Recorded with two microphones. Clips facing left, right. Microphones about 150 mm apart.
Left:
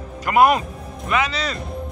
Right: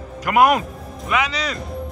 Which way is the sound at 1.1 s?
15° right (ahead or behind).